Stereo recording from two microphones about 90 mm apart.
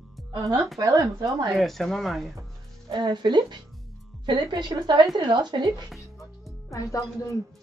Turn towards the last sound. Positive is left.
turn(degrees=35)  # may be behind; listen again after turning